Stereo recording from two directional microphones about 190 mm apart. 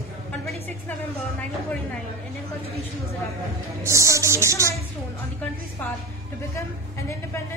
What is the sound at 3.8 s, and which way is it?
Music, 15° right (ahead or behind).